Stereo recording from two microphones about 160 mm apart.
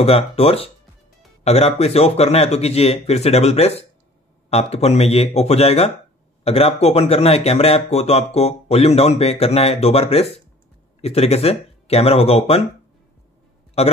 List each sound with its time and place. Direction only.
0.4 s speech: 35° left (ahead or behind)
13.8 s a man's voice: 40° left (ahead or behind)